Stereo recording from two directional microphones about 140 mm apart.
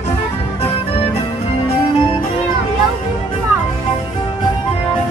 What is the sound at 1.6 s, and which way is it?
Music, 40° left (ahead or behind).